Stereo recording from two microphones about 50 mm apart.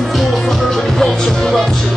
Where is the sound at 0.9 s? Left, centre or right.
Centre.